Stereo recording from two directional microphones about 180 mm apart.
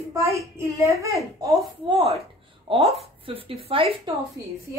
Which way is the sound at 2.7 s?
30° right (ahead or behind).